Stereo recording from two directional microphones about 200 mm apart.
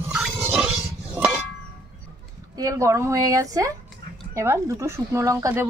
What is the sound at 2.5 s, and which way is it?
Speech, 15° right (ahead or behind).